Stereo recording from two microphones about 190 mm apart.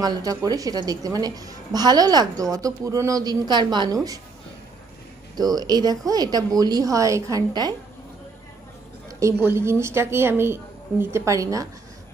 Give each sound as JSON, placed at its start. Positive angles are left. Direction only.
{"t": 0.0, "sound": "a woman's voice", "side_deg": -20}
{"t": 5.3, "sound": "a woman's voice", "side_deg": -20}
{"t": 9.2, "sound": "a woman's voice", "side_deg": -15}